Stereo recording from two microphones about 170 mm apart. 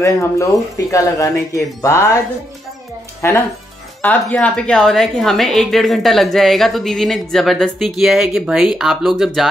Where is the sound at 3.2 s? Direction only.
15° left (ahead or behind).